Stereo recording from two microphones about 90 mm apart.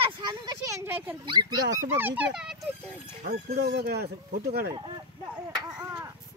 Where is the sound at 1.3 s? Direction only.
55° right (ahead or behind).